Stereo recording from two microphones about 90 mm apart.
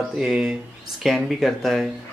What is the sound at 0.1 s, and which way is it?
Speech, 10° right (ahead or behind).